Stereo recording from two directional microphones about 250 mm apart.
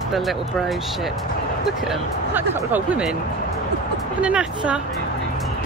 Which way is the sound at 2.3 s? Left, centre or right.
Centre.